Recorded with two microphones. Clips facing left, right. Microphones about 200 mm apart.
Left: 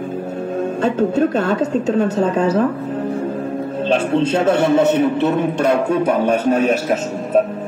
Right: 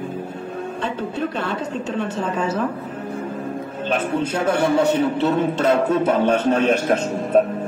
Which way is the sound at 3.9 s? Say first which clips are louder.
Left 5 dB; 30° left (ahead or behind).